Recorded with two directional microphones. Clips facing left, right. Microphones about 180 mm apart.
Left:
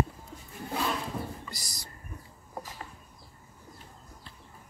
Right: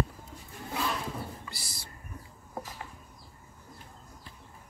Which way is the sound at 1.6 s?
40° left (ahead or behind).